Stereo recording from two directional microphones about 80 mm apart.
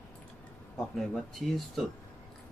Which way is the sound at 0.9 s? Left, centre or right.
Centre.